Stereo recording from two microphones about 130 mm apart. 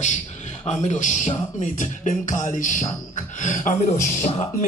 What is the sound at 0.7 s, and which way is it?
Speech, 60° left (ahead or behind).